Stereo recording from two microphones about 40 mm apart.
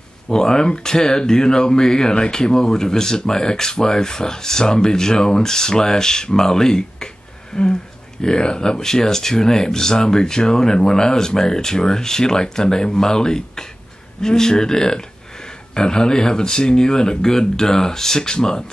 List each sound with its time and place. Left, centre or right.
0.3 s speech: centre